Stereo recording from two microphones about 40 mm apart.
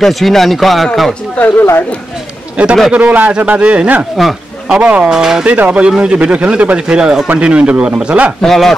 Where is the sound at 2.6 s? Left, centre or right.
Right.